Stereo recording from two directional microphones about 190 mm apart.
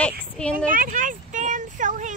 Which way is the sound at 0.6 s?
45° right (ahead or behind).